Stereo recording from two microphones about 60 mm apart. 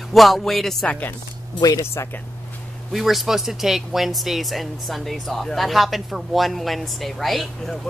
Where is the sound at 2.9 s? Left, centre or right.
Centre.